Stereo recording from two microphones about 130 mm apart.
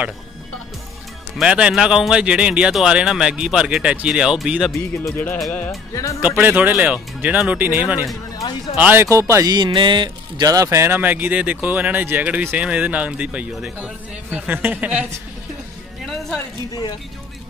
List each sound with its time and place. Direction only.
1.4 s a man's voice: 5° right (ahead or behind)
5.1 s speech: 10° left (ahead or behind)
6.2 s speech: 10° right (ahead or behind)